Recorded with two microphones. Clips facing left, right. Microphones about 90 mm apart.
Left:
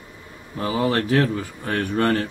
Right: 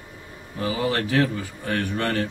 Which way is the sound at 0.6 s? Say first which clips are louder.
Left 3 dB; 40° left (ahead or behind).